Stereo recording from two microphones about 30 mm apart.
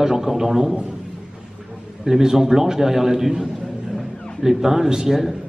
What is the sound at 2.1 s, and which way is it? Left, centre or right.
A man's voice, centre.